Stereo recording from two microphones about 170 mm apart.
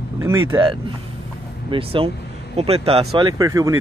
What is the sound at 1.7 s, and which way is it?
Speech, 35° right (ahead or behind).